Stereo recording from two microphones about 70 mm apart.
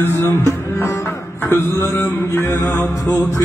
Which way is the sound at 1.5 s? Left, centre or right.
Left.